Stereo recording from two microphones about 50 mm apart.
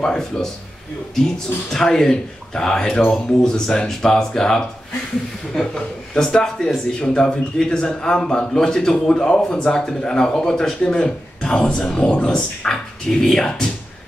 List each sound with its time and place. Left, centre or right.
0.0 s speech: centre
1.7 s speech: centre